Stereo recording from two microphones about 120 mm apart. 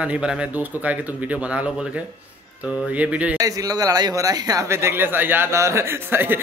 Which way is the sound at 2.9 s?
10° right (ahead or behind).